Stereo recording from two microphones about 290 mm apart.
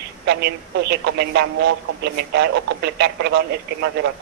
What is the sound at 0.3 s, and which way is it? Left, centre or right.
Speech, right.